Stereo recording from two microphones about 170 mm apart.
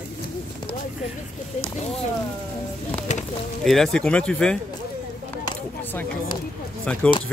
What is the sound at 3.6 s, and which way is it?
Speech, centre (ahead or behind).